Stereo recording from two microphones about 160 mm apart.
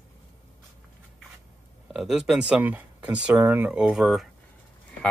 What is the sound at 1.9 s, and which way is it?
Speech, centre (ahead or behind).